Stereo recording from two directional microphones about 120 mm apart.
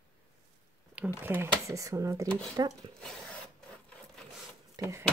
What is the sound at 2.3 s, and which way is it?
Speech, 10° left (ahead or behind).